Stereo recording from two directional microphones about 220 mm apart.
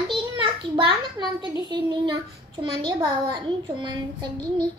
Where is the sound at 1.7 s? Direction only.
20° right (ahead or behind).